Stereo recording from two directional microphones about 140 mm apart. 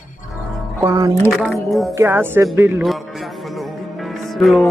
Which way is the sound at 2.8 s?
Centre (ahead or behind).